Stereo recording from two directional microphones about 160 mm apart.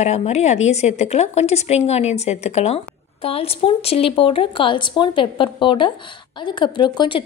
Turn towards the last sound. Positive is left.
turn(degrees=30)  # may be behind; listen again after turning